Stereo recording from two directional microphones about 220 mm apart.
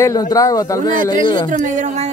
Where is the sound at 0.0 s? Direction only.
15° left (ahead or behind).